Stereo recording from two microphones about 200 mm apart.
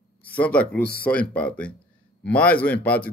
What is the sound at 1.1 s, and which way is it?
A man's voice, 5° left (ahead or behind).